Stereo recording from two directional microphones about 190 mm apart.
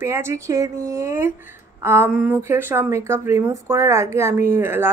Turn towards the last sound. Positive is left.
turn(degrees=-10)  # may be behind; listen again after turning